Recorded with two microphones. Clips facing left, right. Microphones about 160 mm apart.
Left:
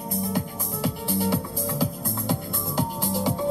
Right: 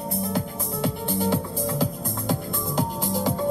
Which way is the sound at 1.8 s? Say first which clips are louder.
Right 1 dB; 5° left (ahead or behind).